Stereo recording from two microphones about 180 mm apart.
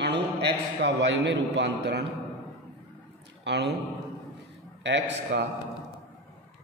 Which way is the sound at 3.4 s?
70° right (ahead or behind).